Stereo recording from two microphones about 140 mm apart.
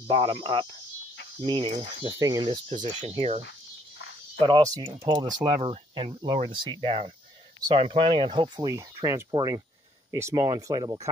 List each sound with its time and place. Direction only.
0.1 s speech: 40° right (ahead or behind)
2.1 s speech: 25° right (ahead or behind)
3.1 s speech: 50° right (ahead or behind)
4.4 s speech: 30° right (ahead or behind)
8.5 s speech: 25° right (ahead or behind)